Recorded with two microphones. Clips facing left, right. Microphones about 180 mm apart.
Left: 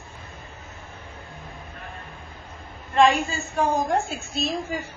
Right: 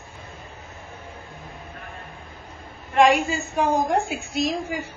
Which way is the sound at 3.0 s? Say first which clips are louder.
Right 1 dB; 15° right (ahead or behind).